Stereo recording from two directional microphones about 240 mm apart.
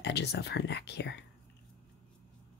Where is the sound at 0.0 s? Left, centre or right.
Left.